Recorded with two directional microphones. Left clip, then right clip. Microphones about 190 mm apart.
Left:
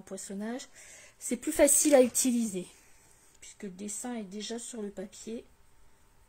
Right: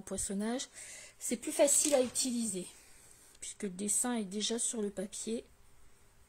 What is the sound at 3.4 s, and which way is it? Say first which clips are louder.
Speech: right 3 dB; 25° right (ahead or behind).